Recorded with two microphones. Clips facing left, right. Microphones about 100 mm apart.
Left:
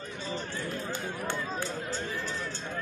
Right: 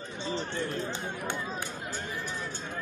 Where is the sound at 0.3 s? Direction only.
25° right (ahead or behind).